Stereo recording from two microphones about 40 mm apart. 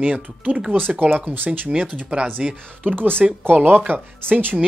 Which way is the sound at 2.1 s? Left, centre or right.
Right.